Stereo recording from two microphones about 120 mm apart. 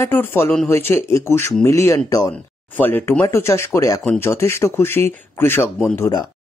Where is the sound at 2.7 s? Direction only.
15° left (ahead or behind).